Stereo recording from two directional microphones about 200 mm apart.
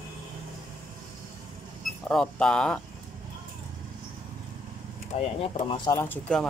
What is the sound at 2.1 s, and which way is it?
Speech, 5° left (ahead or behind).